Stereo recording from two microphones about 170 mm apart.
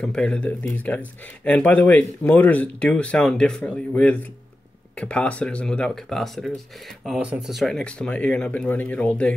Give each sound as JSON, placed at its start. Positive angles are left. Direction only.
{"t": 0.0, "sound": "speech", "side_deg": 5}